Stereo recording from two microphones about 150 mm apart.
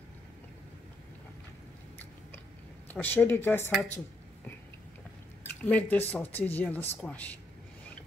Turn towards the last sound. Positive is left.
turn(degrees=10)  # may be behind; listen again after turning